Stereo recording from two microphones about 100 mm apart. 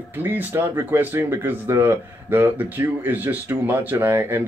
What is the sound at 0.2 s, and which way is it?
Speech, 20° right (ahead or behind).